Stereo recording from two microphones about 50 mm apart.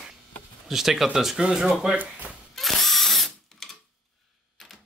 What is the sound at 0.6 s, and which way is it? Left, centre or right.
Speech, centre.